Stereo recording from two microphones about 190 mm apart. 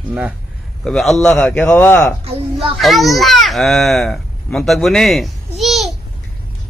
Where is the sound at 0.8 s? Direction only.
Centre (ahead or behind).